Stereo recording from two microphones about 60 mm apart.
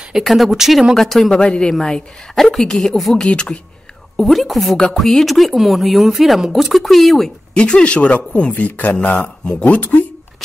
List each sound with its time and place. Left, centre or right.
0.1 s speech: centre
1.4 s a woman's voice: centre
3.2 s a woman's voice: centre
4.2 s speech: centre
7.5 s speech: centre
8.9 s a woman's voice: centre